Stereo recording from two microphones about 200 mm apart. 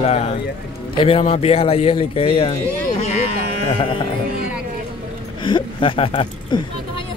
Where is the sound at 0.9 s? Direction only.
30° left (ahead or behind).